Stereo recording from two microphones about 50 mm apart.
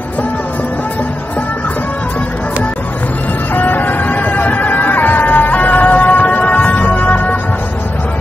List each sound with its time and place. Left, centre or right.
3.5 s vehicle: left